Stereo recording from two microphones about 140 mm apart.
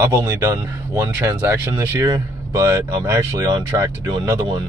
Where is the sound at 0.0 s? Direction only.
20° right (ahead or behind).